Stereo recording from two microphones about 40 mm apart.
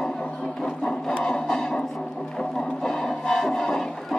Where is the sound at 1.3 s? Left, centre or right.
Centre.